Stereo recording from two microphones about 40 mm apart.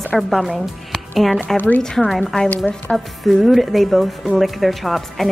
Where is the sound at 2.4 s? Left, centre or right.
Left.